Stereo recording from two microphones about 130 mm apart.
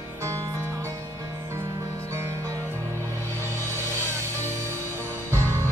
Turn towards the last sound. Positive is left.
turn(degrees=-20)  # may be behind; listen again after turning